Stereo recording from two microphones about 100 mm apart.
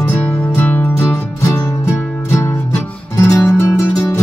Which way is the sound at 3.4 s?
25° left (ahead or behind).